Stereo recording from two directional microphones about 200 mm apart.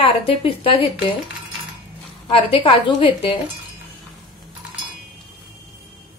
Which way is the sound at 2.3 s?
25° left (ahead or behind).